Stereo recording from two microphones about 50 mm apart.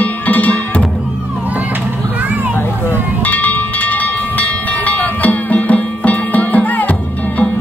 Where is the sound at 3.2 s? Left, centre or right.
Left.